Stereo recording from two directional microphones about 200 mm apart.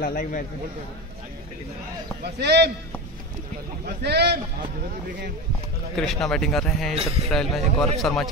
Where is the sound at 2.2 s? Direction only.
55° right (ahead or behind).